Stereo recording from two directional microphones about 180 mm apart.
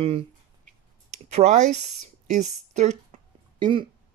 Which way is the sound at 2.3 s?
40° right (ahead or behind).